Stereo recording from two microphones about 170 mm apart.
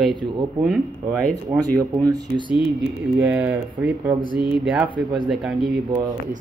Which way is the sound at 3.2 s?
5° right (ahead or behind).